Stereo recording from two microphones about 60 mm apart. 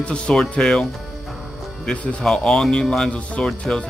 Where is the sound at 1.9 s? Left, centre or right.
Centre.